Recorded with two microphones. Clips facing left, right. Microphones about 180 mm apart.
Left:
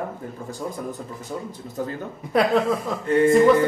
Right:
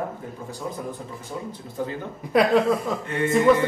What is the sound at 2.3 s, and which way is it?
Speech, centre (ahead or behind).